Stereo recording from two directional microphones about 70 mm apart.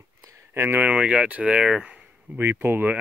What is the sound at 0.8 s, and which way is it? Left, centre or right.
Speech, centre.